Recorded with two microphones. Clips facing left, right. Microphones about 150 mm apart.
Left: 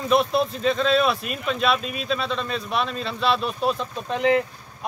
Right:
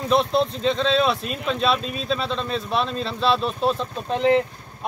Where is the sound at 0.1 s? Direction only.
5° left (ahead or behind).